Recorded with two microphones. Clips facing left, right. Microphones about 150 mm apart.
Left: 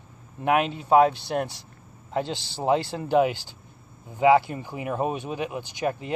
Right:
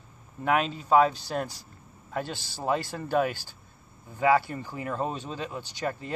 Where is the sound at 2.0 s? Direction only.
20° left (ahead or behind).